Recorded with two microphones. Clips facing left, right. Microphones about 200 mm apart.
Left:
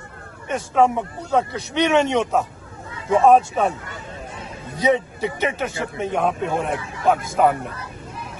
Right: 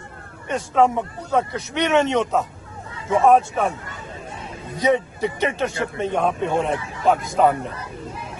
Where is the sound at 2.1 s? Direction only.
15° left (ahead or behind).